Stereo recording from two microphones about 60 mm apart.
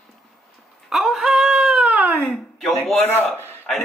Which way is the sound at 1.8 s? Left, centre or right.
Centre.